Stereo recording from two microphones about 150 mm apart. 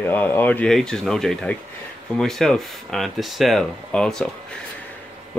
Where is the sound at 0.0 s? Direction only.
10° left (ahead or behind).